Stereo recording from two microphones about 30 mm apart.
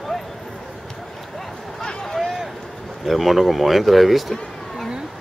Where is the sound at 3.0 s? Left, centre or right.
Centre.